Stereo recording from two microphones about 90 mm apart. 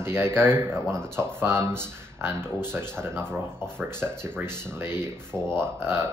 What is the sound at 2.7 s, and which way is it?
Speech, 25° right (ahead or behind).